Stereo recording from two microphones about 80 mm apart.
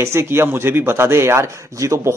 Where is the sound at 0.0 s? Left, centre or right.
Right.